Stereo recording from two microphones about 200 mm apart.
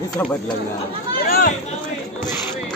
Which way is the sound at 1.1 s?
45° left (ahead or behind).